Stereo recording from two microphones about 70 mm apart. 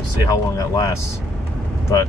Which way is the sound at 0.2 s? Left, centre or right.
Left.